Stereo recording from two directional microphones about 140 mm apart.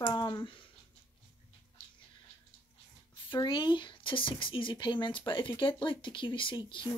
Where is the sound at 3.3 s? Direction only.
35° left (ahead or behind).